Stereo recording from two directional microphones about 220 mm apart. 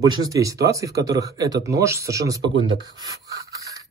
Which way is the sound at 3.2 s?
15° right (ahead or behind).